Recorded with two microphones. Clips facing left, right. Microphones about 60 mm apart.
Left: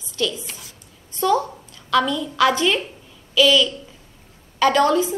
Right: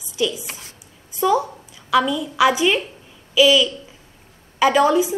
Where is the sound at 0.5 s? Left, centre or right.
Right.